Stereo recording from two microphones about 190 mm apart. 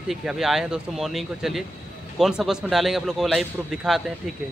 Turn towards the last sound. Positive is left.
turn(degrees=0)  # may be behind; listen again after turning